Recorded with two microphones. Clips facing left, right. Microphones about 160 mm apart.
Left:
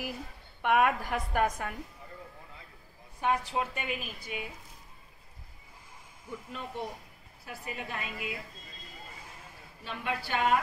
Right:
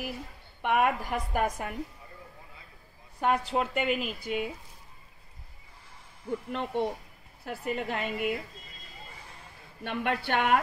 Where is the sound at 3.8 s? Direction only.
90° right.